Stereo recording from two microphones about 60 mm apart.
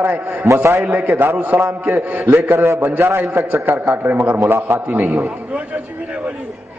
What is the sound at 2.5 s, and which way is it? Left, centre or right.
Speech, right.